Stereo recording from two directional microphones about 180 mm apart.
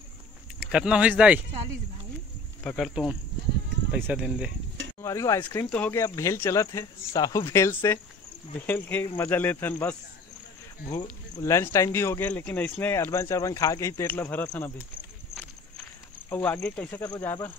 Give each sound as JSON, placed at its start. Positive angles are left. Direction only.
{"t": 0.6, "sound": "speech", "side_deg": -5}
{"t": 2.6, "sound": "speech", "side_deg": 0}
{"t": 5.0, "sound": "speech", "side_deg": 15}
{"t": 16.3, "sound": "speech", "side_deg": 10}